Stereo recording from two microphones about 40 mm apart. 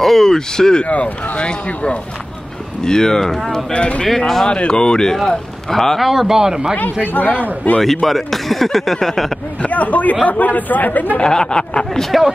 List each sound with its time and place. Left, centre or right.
0.0 s speech: centre
0.8 s speech: left
2.8 s speech: centre
3.7 s speech: left; by 5.9 s centre
5.9 s speech: centre
6.8 s speech: left
7.8 s speech: centre
9.7 s speech: left
11.1 s speech: centre
12.0 s speech: centre